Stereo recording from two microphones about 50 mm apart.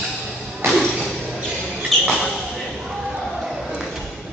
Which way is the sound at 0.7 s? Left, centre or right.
Centre.